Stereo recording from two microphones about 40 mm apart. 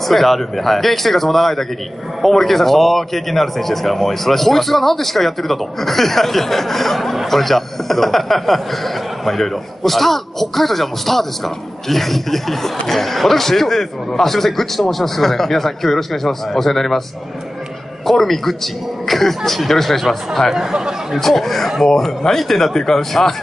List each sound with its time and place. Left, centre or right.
0.1 s a man's voice: centre
18.0 s a man's voice: centre
20.5 s speech: centre
21.2 s a man's voice: centre
21.6 s speech: centre
21.9 s a man's voice: centre